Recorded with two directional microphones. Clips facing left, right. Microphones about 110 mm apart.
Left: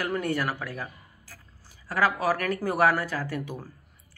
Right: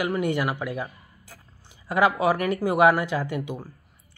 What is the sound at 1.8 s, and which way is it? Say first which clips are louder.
Speech: right 4 dB; 20° right (ahead or behind).